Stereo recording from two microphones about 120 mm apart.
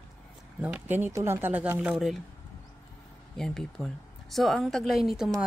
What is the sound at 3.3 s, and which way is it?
Speech, 5° left (ahead or behind).